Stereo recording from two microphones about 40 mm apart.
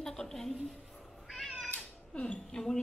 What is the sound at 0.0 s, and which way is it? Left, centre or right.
Speech, centre.